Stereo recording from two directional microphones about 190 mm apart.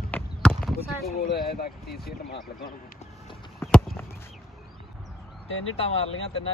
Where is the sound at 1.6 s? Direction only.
55° left (ahead or behind).